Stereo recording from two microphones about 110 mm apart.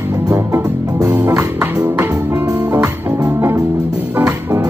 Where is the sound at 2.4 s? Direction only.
35° right (ahead or behind).